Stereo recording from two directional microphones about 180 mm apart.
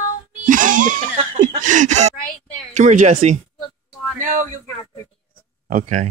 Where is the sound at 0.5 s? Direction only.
45° right (ahead or behind).